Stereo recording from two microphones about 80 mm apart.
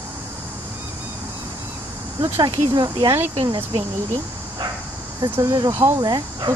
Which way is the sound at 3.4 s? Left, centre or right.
Right.